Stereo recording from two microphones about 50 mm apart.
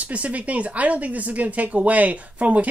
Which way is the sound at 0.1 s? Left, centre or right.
Right.